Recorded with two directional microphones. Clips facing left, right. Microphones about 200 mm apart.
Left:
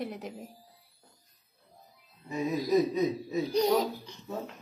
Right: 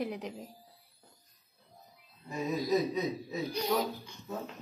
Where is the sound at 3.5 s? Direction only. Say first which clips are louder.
Left 6 dB; 40° left (ahead or behind).